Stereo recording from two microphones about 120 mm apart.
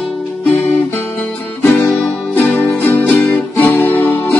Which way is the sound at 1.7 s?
5° left (ahead or behind).